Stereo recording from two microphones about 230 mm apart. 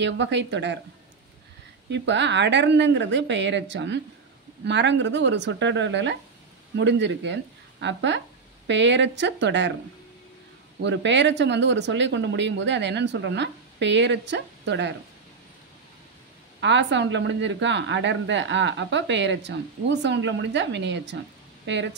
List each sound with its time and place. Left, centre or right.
0.0 s a woman's voice: right
1.9 s a woman's voice: right
10.8 s a woman's voice: right
16.6 s a woman's voice: right